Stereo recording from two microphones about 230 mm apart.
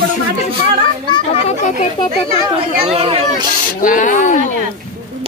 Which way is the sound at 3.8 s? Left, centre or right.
Left.